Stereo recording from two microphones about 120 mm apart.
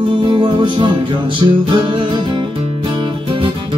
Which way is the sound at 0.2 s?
40° right (ahead or behind).